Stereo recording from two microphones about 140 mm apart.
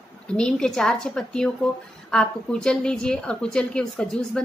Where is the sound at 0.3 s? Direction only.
5° left (ahead or behind).